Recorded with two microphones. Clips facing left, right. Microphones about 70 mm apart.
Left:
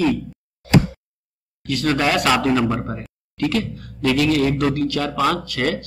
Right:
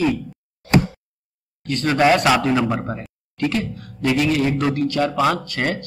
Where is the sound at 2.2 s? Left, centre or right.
Centre; by 5.8 s right.